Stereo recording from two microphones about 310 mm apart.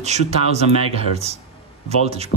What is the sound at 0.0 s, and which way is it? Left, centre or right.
Speech, right.